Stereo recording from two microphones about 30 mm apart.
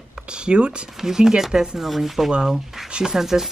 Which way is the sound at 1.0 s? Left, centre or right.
Centre.